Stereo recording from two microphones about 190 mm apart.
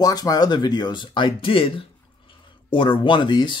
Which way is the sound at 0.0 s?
20° left (ahead or behind).